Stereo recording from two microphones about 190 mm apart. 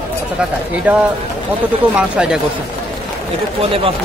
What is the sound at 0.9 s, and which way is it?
Speech, 10° right (ahead or behind).